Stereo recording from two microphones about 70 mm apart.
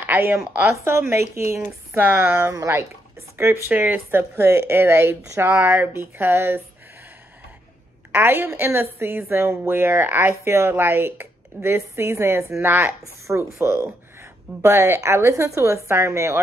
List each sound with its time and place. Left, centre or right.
0.0 s speech: right
0.8 s a woman's voice: right
2.0 s speech: right
2.5 s speech: right
3.7 s a woman's voice: right
8.1 s a woman's voice: right
12.6 s a woman's voice: right